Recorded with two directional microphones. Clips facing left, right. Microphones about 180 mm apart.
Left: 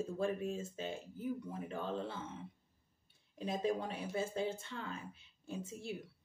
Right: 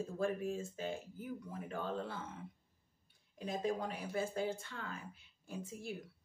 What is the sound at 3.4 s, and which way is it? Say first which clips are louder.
A woman's voice: left 1 dB; 30° left (ahead or behind).